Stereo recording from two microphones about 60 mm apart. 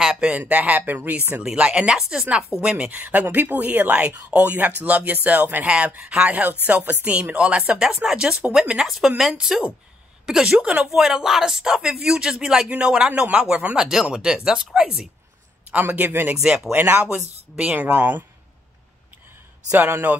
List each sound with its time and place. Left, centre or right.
0.0 s a sound: centre
0.3 s speech: right
1.4 s speech: centre
7.8 s speech: centre
13.1 s speech: right
13.7 s speech: centre
15.9 s speech: right